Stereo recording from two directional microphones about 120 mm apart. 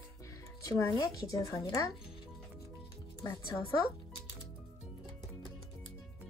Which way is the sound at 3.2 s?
25° left (ahead or behind).